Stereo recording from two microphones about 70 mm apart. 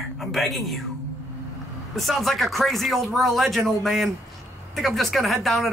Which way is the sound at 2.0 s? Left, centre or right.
Centre.